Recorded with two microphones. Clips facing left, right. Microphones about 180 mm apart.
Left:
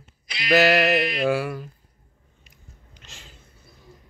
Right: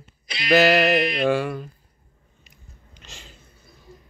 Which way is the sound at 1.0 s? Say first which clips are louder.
Right 2 dB; 20° right (ahead or behind).